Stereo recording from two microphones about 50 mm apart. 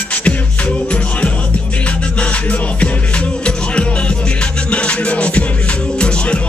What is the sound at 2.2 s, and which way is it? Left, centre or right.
Music, left.